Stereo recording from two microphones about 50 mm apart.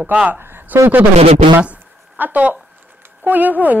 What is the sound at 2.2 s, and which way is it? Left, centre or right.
Speech, right.